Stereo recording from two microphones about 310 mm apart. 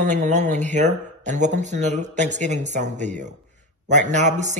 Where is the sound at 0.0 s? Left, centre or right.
Right.